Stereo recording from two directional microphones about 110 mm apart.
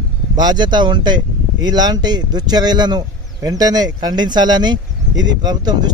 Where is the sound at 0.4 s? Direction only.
40° right (ahead or behind).